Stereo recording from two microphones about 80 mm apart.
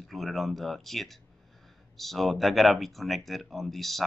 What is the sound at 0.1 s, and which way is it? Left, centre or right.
Speech, centre.